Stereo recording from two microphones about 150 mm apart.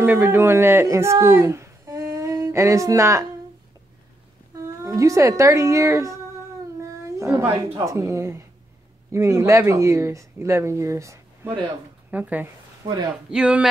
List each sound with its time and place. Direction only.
0.0 s speech: 15° right (ahead or behind)
4.8 s a woman's voice: 20° right (ahead or behind)
12.8 s a man's voice: 20° right (ahead or behind)
13.3 s speech: 5° right (ahead or behind)